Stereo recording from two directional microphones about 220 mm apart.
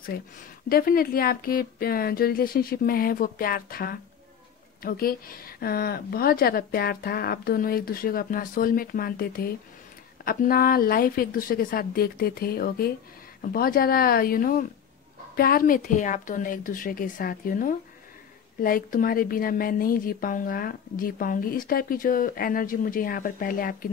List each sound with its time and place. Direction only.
0.1 s a woman's voice: 45° left (ahead or behind)